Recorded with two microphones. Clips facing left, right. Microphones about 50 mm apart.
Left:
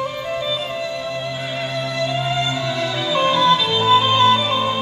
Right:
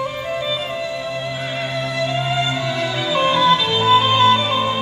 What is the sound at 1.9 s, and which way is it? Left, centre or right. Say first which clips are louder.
Music: right 1 dB; centre.